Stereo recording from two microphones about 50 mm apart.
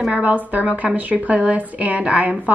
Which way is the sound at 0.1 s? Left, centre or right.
Right.